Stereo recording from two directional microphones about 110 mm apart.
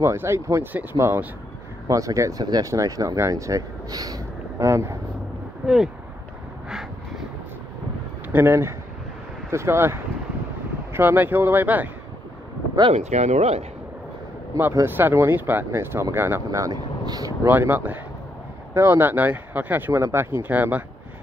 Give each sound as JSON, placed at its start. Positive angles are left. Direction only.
{"t": 0.0, "sound": "speech", "side_deg": -25}
{"t": 8.3, "sound": "speech", "side_deg": -20}
{"t": 12.9, "sound": "speech", "side_deg": -90}
{"t": 14.6, "sound": "speech", "side_deg": -25}
{"t": 17.5, "sound": "speech", "side_deg": -20}